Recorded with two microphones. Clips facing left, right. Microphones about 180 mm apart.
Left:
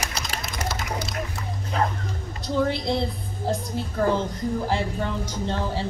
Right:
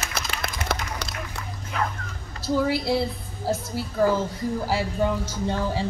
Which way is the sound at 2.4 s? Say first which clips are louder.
Right 1 dB; 5° right (ahead or behind).